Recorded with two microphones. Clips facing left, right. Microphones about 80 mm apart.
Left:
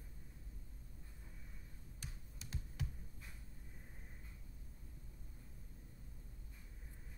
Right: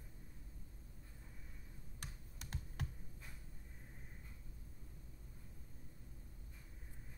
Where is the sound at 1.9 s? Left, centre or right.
Right.